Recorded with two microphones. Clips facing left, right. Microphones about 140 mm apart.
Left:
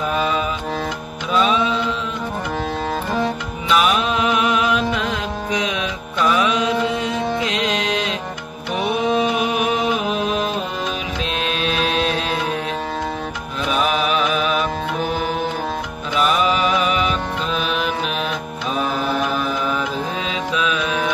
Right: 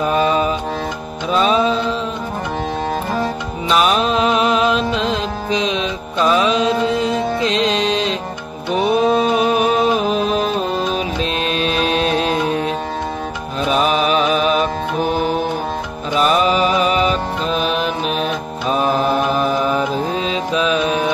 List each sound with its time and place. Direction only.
0.1 s music: 40° right (ahead or behind)
3.6 s music: 35° right (ahead or behind)
11.4 s music: 40° right (ahead or behind)
13.7 s music: 35° right (ahead or behind)
16.2 s music: 35° right (ahead or behind)
18.7 s mantra: 40° right (ahead or behind)
20.5 s music: 35° right (ahead or behind)